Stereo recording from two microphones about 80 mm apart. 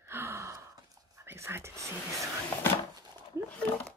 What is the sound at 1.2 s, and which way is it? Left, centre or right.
Speech, right.